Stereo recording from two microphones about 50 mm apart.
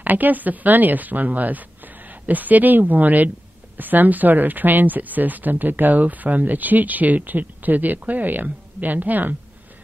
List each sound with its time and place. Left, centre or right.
0.0 s a woman's voice: right